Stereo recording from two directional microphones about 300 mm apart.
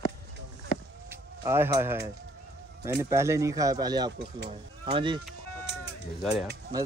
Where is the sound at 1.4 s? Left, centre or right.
Centre.